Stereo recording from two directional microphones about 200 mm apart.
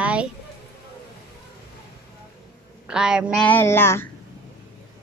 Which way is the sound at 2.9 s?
5° right (ahead or behind).